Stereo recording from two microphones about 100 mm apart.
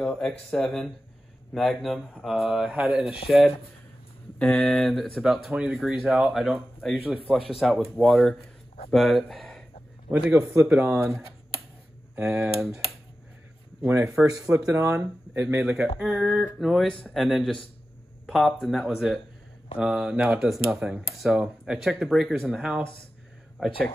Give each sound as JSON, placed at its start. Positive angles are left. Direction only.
{"t": 0.0, "sound": "speech", "side_deg": 5}
{"t": 10.4, "sound": "speech", "side_deg": -30}
{"t": 12.2, "sound": "speech", "side_deg": -5}
{"t": 13.8, "sound": "speech", "side_deg": -25}
{"t": 15.6, "sound": "speech", "side_deg": -5}